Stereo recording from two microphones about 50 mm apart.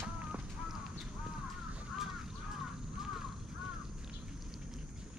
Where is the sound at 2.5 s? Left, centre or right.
Centre.